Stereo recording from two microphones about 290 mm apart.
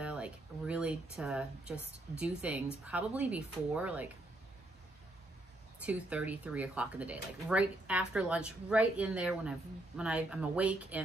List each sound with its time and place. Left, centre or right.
0.0 s speech: centre
5.8 s speech: centre